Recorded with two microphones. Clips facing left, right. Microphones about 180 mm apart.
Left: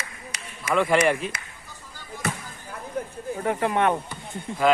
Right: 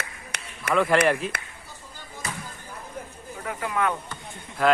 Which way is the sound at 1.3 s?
60° right (ahead or behind).